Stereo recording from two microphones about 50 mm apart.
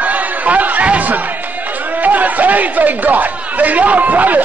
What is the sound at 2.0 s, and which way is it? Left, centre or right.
Speech, right.